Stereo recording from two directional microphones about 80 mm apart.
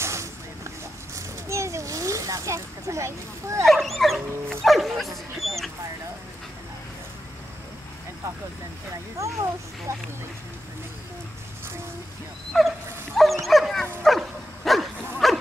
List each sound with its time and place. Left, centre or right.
0.0 s a sound: right
3.6 s speech: centre
9.2 s speech: right
12.5 s dog: centre
14.6 s bow-wow: centre